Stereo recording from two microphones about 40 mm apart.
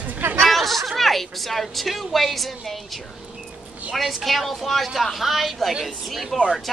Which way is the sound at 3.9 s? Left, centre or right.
Centre.